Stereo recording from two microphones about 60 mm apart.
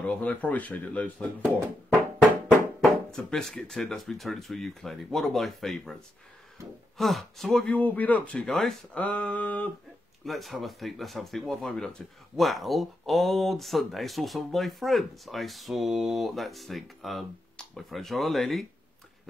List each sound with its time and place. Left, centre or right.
0.0 s speech: left
3.1 s speech: centre
7.0 s speech: centre
7.7 s speech: left
8.4 s speech: centre
8.9 s speech: left
10.2 s speech: centre